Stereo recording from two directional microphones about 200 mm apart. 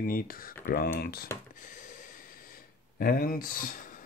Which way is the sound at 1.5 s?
40° left (ahead or behind).